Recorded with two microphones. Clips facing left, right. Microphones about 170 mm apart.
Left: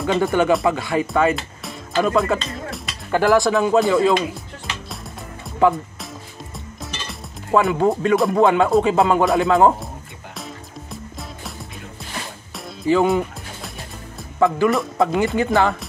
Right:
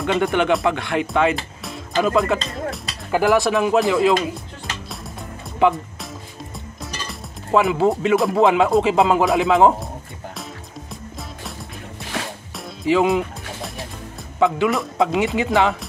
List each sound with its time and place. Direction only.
0.0 s speech: centre (ahead or behind)
7.1 s music: centre (ahead or behind)
8.1 s speech: centre (ahead or behind)
12.5 s music: centre (ahead or behind)
14.4 s speech: centre (ahead or behind)